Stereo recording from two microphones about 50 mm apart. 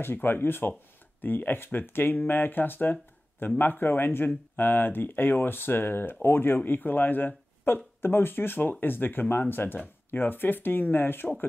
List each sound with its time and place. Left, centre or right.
0.0 s speech: left